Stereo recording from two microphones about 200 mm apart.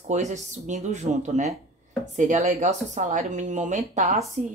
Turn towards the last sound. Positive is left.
turn(degrees=-40)  # may be behind; listen again after turning